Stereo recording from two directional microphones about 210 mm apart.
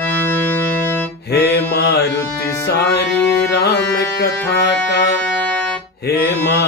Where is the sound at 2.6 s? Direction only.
50° left (ahead or behind).